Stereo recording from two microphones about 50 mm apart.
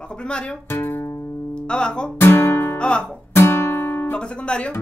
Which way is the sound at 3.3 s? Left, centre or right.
Left.